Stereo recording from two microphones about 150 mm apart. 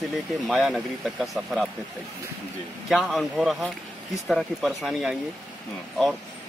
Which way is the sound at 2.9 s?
Centre (ahead or behind).